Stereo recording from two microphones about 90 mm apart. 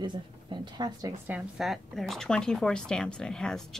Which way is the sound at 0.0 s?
55° right (ahead or behind).